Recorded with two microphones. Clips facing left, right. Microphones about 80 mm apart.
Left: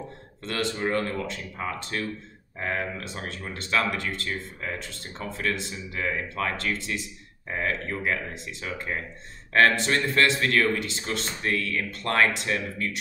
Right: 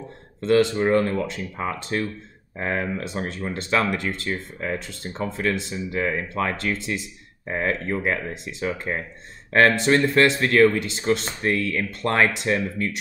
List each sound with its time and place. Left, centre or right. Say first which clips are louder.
0.4 s speech: right 10 dB; right
5.9 s speech: right 4 dB; right